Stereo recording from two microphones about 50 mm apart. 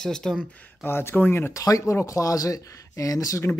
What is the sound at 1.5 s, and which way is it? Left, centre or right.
Speech, left.